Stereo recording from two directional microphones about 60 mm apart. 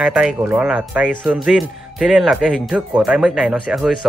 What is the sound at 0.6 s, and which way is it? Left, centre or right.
Speech, right.